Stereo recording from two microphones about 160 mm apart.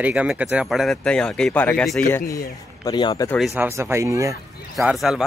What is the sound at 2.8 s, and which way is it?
Speech, 25° left (ahead or behind).